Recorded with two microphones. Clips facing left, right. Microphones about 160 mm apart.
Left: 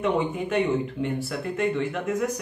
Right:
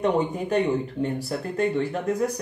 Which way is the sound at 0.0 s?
35° right (ahead or behind).